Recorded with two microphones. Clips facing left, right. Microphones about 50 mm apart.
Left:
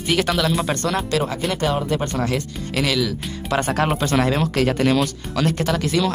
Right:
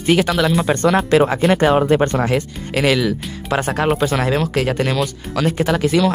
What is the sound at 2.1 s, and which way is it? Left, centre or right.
Speech, right.